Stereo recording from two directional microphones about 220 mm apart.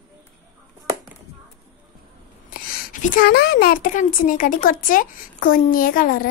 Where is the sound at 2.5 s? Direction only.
40° left (ahead or behind).